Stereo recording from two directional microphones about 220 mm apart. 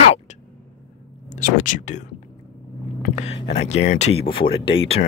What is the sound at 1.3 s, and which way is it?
Speech, 35° left (ahead or behind).